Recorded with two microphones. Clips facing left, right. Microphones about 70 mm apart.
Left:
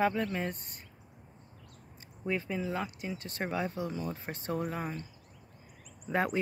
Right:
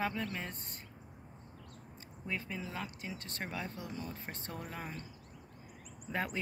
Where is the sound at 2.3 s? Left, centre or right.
Centre.